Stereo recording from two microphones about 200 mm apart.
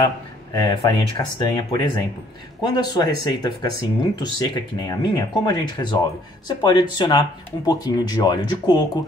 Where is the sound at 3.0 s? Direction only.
20° left (ahead or behind).